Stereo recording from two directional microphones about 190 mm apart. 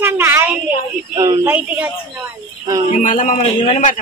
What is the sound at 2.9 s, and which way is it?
A man's voice, 45° left (ahead or behind).